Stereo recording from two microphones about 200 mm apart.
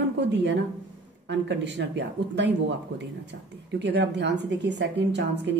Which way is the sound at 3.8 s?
60° right (ahead or behind).